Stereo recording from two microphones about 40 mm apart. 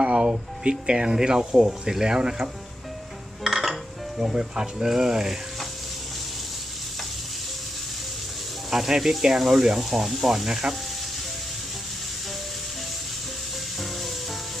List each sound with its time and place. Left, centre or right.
0.0 s speech: right
3.4 s music: centre
4.2 s speech: centre
8.6 s speech: centre